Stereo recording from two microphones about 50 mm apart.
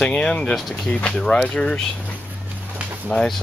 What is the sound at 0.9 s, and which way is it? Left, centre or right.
Speech, left.